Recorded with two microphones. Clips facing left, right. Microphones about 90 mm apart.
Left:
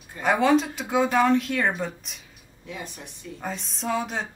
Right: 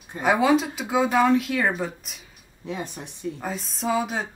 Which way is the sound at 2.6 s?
25° right (ahead or behind).